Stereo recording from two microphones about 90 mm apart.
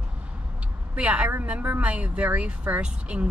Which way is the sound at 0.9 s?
15° right (ahead or behind).